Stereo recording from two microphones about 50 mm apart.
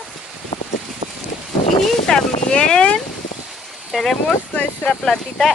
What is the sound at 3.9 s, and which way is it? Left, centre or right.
Speech, centre.